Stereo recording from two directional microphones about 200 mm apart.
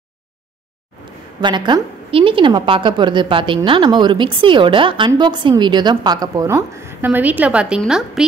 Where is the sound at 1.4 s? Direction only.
20° right (ahead or behind).